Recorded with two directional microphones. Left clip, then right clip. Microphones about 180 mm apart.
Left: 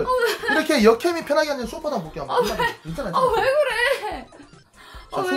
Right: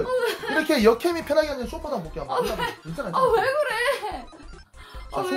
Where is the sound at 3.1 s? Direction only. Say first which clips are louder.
Left 2 dB; centre (ahead or behind).